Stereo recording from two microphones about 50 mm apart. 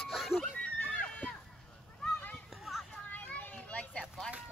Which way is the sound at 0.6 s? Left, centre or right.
Left.